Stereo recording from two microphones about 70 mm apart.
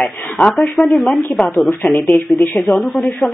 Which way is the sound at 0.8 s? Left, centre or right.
Centre.